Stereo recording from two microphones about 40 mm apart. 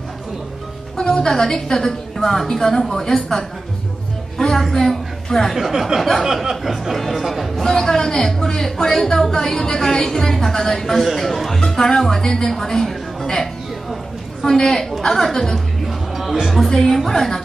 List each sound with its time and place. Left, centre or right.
0.9 s speech: centre
4.4 s music: left
4.7 s a woman's voice: centre
5.6 s a sound: centre
6.2 s speech: centre
15.9 s music: centre
16.6 s speech: centre